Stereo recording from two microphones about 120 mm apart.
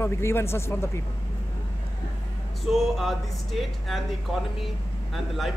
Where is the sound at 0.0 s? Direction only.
20° left (ahead or behind).